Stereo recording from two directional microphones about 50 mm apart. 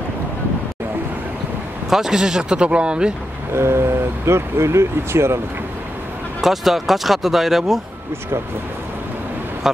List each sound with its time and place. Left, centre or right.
1.9 s speech: centre
2.5 s speech: right
3.5 s speech: right
6.4 s speech: centre